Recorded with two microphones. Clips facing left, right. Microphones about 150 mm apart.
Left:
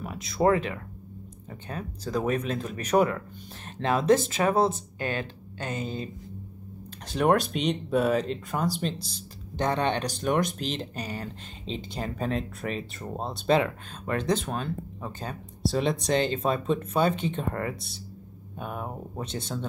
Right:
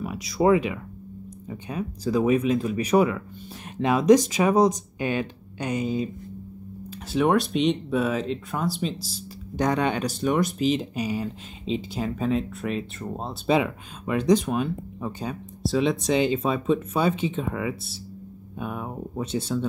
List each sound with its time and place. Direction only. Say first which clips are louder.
0.0 s speech: right 2 dB; 10° right (ahead or behind)
7.1 s speech: right 2 dB; centre (ahead or behind)